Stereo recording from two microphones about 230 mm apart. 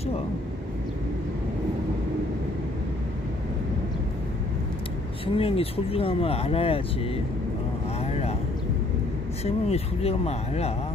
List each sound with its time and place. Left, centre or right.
5.2 s speech: left
8.0 s vehicle: left
9.4 s speech: left